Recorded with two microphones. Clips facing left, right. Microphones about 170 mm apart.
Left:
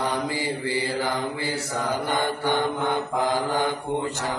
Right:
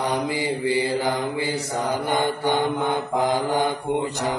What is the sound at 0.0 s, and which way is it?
Mantra, 20° right (ahead or behind).